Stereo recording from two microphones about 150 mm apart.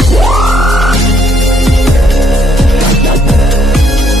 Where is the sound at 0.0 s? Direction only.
Centre (ahead or behind).